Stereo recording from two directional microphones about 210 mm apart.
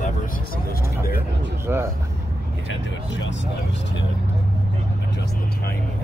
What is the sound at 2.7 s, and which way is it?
Speech, 60° left (ahead or behind).